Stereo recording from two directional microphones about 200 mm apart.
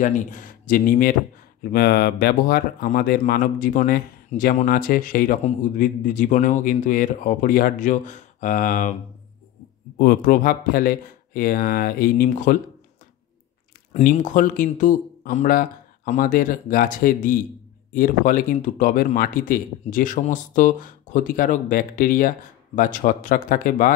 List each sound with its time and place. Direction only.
0.0 s speech: 40° left (ahead or behind)
9.9 s speech: 45° left (ahead or behind)
14.0 s speech: 40° left (ahead or behind)